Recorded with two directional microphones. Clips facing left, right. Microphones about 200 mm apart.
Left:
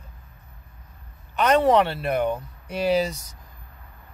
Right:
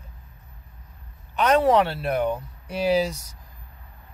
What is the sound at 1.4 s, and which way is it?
Speech, centre (ahead or behind).